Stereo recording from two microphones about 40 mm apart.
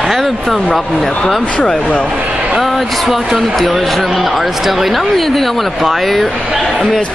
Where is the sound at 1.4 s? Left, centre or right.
Left.